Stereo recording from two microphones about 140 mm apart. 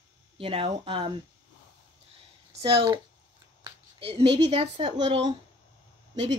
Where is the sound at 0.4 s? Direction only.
40° right (ahead or behind).